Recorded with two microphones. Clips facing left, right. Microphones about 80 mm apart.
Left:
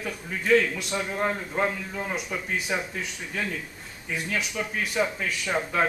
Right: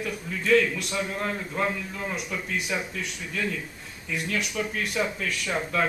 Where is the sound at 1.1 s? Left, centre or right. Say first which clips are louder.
Left 3 dB; left.